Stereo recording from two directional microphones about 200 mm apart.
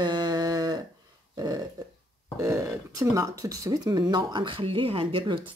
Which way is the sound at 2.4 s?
15° right (ahead or behind).